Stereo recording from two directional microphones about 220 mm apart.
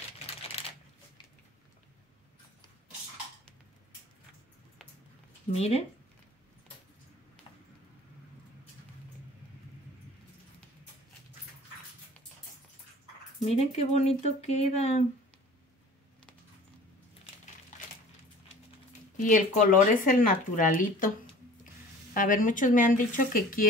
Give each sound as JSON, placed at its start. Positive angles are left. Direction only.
{"t": 0.6, "sound": "shuffling cards", "side_deg": 25}
{"t": 5.5, "sound": "speech", "side_deg": 30}
{"t": 13.4, "sound": "speech", "side_deg": 30}
{"t": 17.7, "sound": "a sound", "side_deg": 35}
{"t": 19.1, "sound": "speech", "side_deg": 35}
{"t": 22.1, "sound": "speech", "side_deg": 35}